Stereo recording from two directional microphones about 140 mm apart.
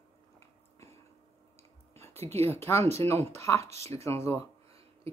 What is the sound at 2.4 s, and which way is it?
Speech, 20° left (ahead or behind).